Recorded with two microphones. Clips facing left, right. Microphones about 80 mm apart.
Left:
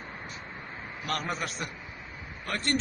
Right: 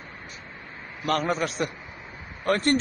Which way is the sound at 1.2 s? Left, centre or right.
Right.